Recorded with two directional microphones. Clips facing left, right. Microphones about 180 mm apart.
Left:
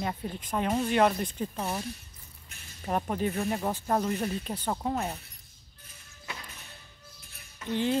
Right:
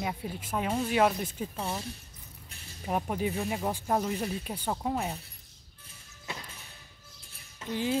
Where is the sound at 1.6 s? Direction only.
5° left (ahead or behind).